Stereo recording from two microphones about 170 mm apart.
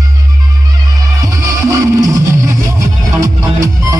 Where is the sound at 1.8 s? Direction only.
20° right (ahead or behind).